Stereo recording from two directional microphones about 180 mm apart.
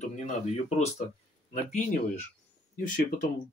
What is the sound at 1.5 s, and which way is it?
Speech, 40° left (ahead or behind).